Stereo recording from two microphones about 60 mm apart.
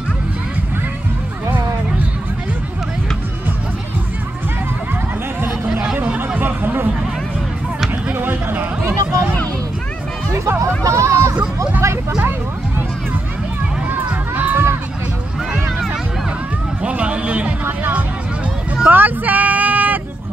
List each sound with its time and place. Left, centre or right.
6.1 s a sound: right
8.1 s music: right
10.8 s hubbub: right
11.8 s a sound: right
12.2 s music: right
13.8 s crowd: right
16.8 s a sound: right
17.6 s music: right
18.9 s vehicle: right